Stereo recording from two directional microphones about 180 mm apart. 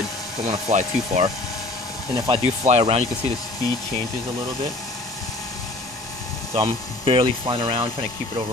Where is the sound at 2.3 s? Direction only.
35° right (ahead or behind).